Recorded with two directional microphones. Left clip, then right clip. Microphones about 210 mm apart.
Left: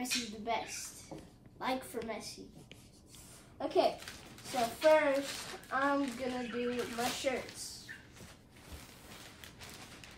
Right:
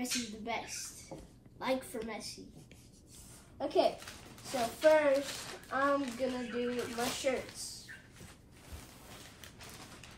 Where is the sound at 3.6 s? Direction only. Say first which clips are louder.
Right 1 dB; centre (ahead or behind).